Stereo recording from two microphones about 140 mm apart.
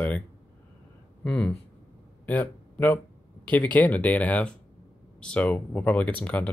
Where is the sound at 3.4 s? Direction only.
10° left (ahead or behind).